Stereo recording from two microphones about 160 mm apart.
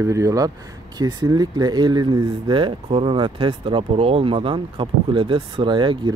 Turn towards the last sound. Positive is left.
turn(degrees=-30)  # may be behind; listen again after turning